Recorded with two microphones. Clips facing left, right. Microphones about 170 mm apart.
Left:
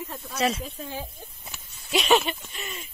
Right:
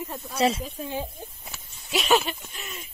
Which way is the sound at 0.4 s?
25° right (ahead or behind).